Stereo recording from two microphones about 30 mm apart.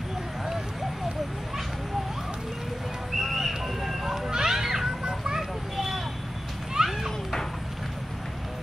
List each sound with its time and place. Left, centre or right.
3.2 s a sound: centre
4.3 s children playing: centre
5.0 s children playing: right
5.8 s vehicle: centre
6.8 s children playing: right